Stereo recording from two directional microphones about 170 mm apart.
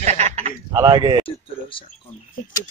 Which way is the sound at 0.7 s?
20° right (ahead or behind).